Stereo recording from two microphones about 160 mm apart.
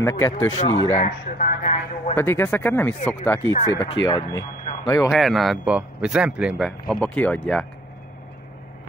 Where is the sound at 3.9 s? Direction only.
25° left (ahead or behind).